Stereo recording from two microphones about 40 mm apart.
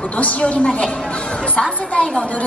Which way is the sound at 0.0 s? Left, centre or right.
Left.